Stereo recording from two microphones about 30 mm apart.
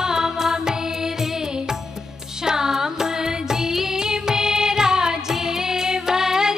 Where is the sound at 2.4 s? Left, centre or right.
Right.